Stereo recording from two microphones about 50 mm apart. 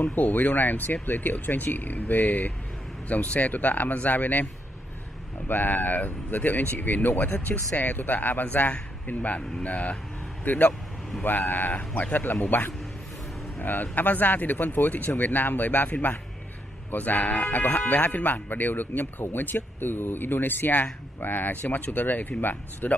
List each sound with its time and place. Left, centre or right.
0.1 s speech: left
5.5 s speech: left